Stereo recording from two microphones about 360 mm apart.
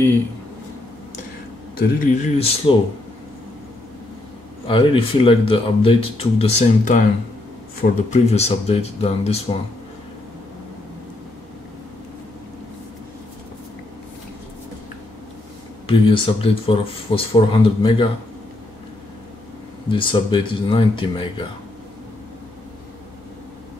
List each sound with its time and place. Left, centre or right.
1.8 s speech: left
4.6 s speech: centre
15.9 s speech: centre
19.9 s speech: centre